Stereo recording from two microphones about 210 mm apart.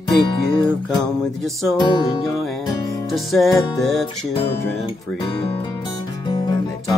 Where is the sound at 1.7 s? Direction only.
20° left (ahead or behind).